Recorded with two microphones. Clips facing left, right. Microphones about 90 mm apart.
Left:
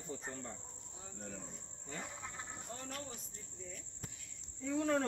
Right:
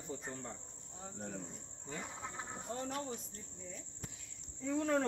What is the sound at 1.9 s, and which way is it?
Insect, 10° right (ahead or behind).